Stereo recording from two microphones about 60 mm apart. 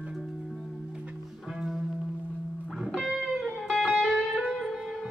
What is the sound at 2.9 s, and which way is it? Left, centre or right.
Music, centre.